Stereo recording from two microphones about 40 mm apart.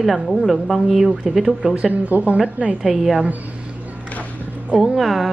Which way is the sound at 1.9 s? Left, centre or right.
Right.